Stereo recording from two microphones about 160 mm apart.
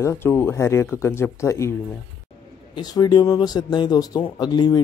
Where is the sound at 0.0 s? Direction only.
15° left (ahead or behind).